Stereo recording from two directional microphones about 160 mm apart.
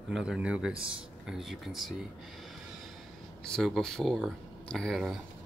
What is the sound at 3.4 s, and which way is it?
Speech, centre (ahead or behind).